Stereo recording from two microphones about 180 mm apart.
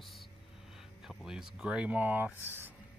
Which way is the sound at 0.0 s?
Centre (ahead or behind).